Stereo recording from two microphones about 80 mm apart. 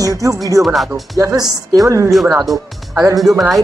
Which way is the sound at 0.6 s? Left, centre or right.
Centre.